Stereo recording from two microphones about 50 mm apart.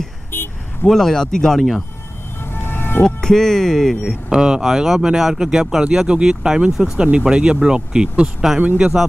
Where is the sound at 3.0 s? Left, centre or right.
Centre.